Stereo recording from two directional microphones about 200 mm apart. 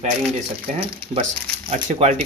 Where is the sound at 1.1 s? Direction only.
35° right (ahead or behind).